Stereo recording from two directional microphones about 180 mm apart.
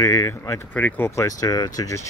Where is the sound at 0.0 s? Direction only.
15° left (ahead or behind).